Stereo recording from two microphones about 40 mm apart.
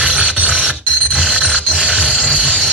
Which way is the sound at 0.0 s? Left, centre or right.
Right.